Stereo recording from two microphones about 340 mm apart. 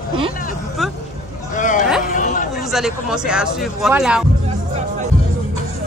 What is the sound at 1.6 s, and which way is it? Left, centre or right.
Speech, left.